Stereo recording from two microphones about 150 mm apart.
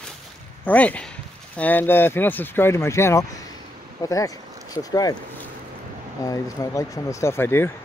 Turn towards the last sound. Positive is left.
turn(degrees=15)  # may be behind; listen again after turning